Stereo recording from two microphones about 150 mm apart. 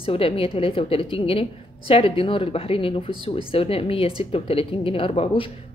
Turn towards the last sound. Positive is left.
turn(degrees=40)  # may be behind; listen again after turning